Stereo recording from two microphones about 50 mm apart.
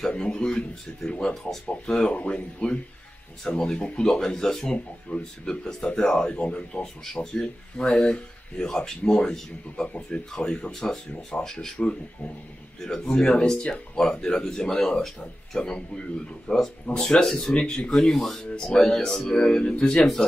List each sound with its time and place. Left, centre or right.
0.1 s speech: centre
1.3 s speech: centre
2.0 s speech: left; by 11.3 s centre
11.3 s speech: left
18.5 s speech: centre